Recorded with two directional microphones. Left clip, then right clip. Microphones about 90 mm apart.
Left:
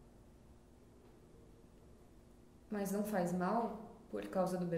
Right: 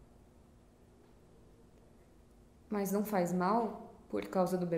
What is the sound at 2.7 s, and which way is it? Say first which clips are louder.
Speech: right 5 dB; 35° right (ahead or behind).